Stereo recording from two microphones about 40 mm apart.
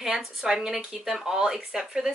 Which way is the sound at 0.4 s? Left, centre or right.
Centre.